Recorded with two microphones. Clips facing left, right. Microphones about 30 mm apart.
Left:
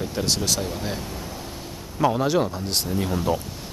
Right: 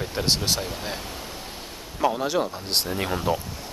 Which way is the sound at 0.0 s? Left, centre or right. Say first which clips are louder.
Even; right.